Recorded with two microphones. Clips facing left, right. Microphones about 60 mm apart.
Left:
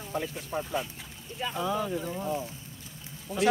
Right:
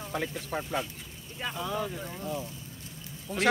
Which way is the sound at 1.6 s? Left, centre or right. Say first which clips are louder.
Left 3 dB; centre.